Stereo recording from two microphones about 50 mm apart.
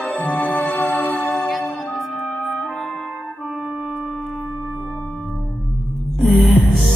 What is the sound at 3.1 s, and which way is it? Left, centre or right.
Music, centre.